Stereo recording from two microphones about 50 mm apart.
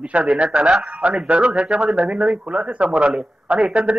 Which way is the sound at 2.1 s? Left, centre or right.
Right.